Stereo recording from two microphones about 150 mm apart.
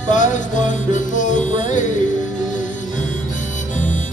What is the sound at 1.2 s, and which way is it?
Music, 55° left (ahead or behind).